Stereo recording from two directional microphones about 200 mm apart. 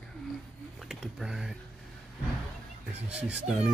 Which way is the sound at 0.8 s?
Centre (ahead or behind).